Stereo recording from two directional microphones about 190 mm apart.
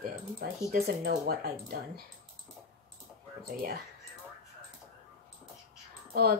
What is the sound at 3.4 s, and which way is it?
Speech, 50° right (ahead or behind).